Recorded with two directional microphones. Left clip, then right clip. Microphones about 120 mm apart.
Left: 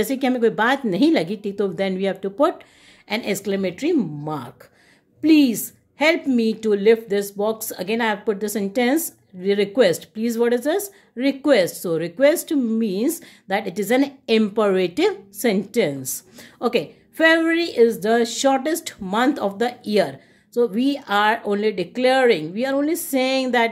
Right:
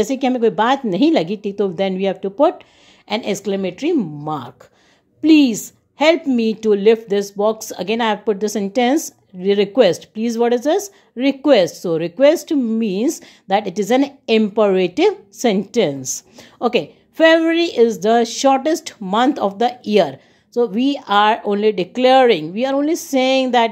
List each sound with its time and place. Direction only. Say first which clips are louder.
0.0 s a woman's voice: right 3 dB; 25° right (ahead or behind)